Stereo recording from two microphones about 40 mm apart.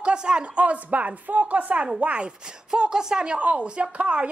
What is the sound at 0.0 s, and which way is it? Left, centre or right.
Speech, right.